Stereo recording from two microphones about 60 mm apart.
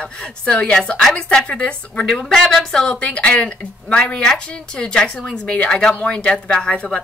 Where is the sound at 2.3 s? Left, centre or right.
Centre.